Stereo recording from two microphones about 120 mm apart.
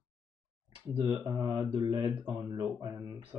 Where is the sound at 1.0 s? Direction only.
35° right (ahead or behind).